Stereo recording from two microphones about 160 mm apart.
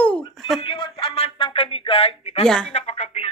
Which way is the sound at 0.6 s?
35° left (ahead or behind).